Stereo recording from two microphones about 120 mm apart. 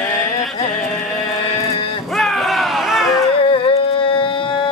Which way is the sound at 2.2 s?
Centre (ahead or behind).